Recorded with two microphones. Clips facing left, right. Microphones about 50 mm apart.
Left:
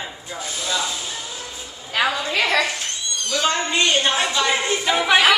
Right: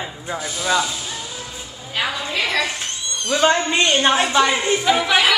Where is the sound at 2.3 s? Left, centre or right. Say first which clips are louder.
Left 1 dB; left.